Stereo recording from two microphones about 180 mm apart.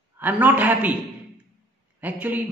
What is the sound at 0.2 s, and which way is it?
Speech, 10° right (ahead or behind).